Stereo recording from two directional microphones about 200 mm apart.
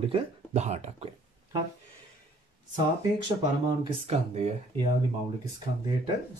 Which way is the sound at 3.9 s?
30° right (ahead or behind).